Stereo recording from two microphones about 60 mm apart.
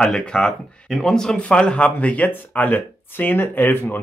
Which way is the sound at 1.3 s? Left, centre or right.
Centre.